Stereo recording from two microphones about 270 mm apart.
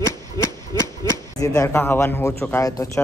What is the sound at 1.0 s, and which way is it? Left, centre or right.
Speech, centre.